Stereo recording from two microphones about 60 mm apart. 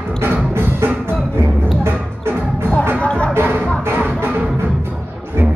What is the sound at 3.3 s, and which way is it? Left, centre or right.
Music, right.